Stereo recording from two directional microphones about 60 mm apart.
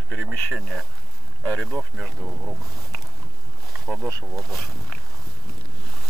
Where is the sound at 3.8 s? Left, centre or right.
Centre.